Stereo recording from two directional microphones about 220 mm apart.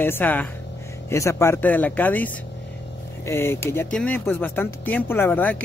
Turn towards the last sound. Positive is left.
turn(degrees=10)  # may be behind; listen again after turning